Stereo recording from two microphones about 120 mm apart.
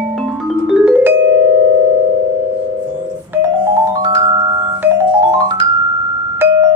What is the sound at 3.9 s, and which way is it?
Music, 40° right (ahead or behind).